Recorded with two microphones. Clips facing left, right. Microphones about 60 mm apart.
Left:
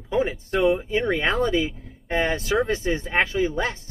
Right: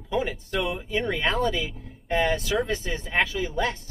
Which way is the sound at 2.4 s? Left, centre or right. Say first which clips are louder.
Left 4 dB; left.